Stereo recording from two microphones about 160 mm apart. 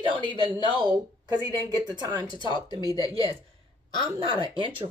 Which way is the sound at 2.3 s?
30° left (ahead or behind).